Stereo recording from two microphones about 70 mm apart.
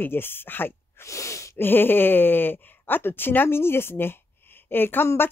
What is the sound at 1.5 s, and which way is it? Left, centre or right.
Speech, left.